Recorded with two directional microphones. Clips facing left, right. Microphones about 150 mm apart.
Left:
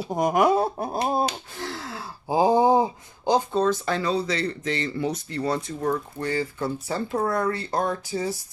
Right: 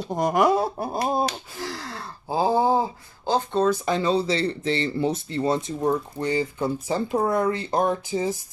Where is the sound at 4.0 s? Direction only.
25° right (ahead or behind).